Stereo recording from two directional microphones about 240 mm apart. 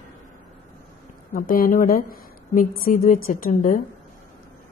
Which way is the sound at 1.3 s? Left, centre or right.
Left.